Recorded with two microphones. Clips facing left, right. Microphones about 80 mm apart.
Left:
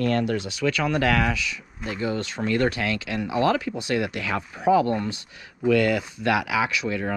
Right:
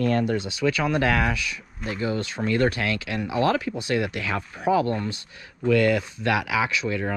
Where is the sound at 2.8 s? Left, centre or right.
Left.